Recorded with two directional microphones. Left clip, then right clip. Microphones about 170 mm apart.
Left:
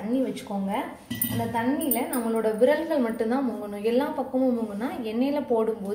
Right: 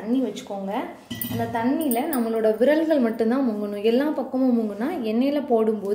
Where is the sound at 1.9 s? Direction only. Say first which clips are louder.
Right 3 dB; 65° right (ahead or behind).